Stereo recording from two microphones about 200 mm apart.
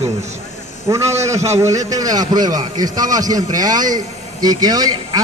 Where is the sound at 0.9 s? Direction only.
15° right (ahead or behind).